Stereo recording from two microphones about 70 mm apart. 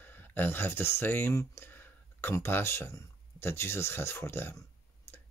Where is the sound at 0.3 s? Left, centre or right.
Left.